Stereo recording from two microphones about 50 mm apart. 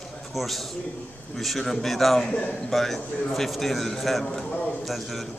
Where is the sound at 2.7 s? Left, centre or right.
Centre.